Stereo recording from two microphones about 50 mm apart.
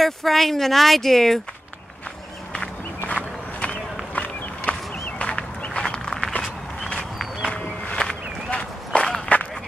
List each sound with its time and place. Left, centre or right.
0.0 s speech: centre
3.1 s walk: left
4.1 s run: left
5.0 s a sound: left
7.5 s a sound: left
8.5 s horse: centre